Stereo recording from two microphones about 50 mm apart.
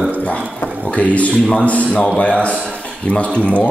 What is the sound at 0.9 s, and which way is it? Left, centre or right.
Speech, left.